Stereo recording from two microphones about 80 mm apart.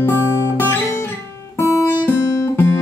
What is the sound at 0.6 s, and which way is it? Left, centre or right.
Guitar, left.